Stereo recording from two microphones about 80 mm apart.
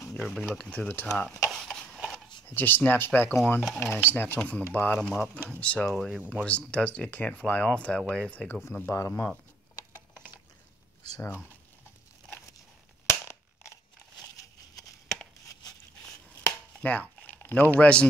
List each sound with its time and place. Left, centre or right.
0.2 s speech: centre
1.0 s speech: centre
1.5 s a sound: centre
2.4 s speech: left
5.9 s speech: centre
6.2 s speech: centre
8.9 s speech: left
11.1 s speech: left
13.1 s crushing: left
16.4 s chop: centre